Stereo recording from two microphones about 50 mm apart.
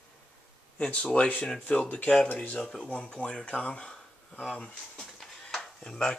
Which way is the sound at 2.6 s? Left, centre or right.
Centre.